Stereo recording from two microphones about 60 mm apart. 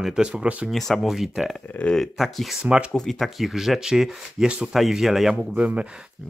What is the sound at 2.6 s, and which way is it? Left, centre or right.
Speech, centre.